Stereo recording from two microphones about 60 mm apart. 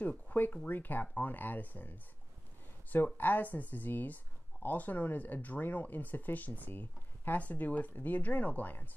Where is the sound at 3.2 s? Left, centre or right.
Left.